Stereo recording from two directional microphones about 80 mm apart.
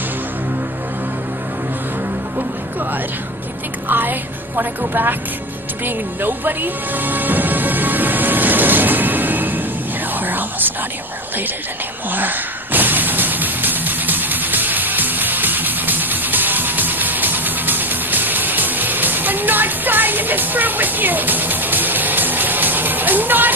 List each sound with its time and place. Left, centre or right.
3.9 s speech: right
5.9 s music: right
10.2 s whispering: right
12.1 s music: right